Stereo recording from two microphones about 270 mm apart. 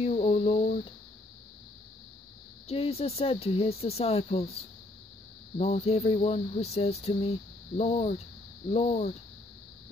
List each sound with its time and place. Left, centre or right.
0.0 s a sound: left
2.7 s speech: left
5.6 s speech: left